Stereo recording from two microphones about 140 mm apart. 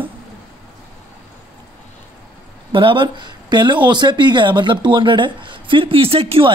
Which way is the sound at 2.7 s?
35° right (ahead or behind).